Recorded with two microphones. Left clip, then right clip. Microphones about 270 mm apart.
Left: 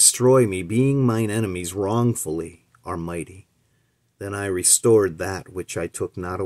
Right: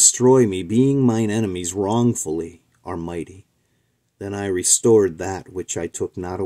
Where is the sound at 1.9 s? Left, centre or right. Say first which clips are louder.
Right 2 dB; centre.